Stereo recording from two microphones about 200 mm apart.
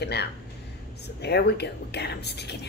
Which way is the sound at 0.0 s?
55° left (ahead or behind).